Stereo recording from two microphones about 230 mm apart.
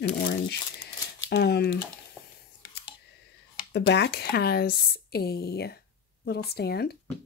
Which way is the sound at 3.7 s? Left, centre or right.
Left.